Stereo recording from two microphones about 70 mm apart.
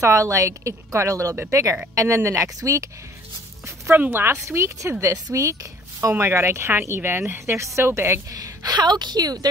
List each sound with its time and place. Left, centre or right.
0.0 s a woman's voice: right
3.9 s a woman's voice: right
6.0 s speech: right
8.3 s a woman's voice: right